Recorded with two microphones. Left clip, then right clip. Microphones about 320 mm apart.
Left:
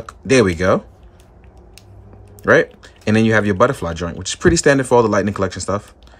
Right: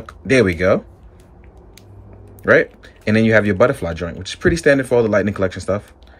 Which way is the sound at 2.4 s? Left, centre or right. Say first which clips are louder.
Even; centre.